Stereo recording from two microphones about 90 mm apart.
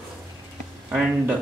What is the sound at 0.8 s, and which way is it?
Speech, 15° right (ahead or behind).